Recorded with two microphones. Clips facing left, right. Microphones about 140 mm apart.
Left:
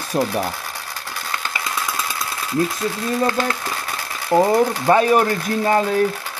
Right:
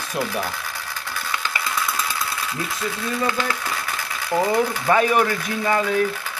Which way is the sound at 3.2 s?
40° left (ahead or behind).